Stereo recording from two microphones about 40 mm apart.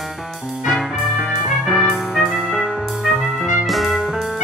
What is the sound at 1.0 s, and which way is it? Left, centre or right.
Trumpet, centre.